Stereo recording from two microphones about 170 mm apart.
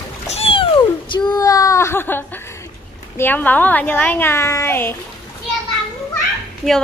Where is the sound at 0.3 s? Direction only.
35° left (ahead or behind); by 2.5 s 10° left (ahead or behind).